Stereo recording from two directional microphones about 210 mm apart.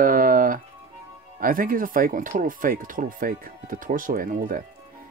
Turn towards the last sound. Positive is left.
turn(degrees=-40)  # may be behind; listen again after turning